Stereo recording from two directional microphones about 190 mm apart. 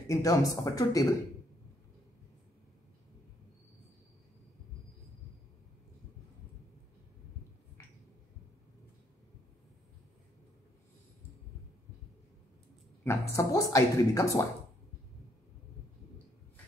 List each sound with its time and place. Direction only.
0.0 s speech: 15° left (ahead or behind)
13.0 s a woman's voice: 15° left (ahead or behind)